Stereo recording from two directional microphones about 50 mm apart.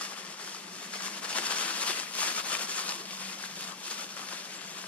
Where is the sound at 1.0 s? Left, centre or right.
Left.